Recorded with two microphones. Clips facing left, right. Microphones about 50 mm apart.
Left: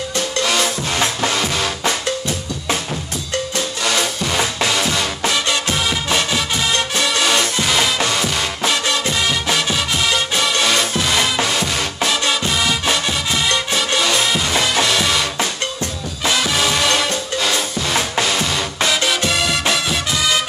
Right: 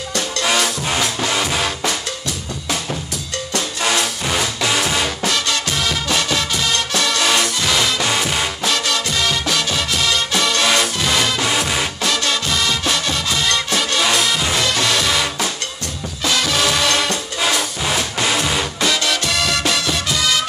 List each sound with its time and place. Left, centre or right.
0.5 s music: centre
4.6 s music: centre
5.3 s music: centre
7.1 s music: centre
8.1 s music: centre
8.6 s music: centre
12.0 s music: centre
14.9 s music: centre
16.3 s music: centre
18.2 s music: centre
18.9 s music: centre